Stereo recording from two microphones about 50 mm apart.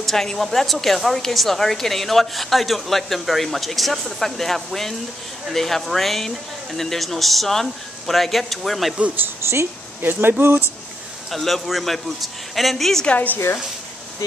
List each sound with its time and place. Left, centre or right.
0.0 s a woman's voice: centre
9.4 s a woman's voice: right
11.2 s a woman's voice: centre
13.0 s a woman's voice: left